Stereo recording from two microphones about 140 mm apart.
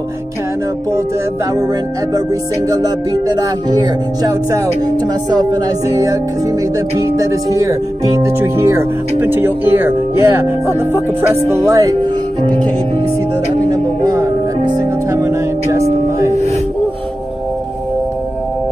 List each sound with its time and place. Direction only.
2.7 s music: 25° right (ahead or behind)
8.2 s speech: 15° right (ahead or behind)
11.4 s music: 20° right (ahead or behind)
14.0 s music: 25° right (ahead or behind)